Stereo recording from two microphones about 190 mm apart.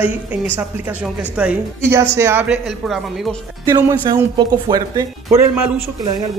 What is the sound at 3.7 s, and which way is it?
A woman's voice, 15° right (ahead or behind).